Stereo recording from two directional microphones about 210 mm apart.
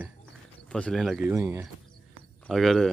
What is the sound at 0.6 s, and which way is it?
Speech, 5° left (ahead or behind).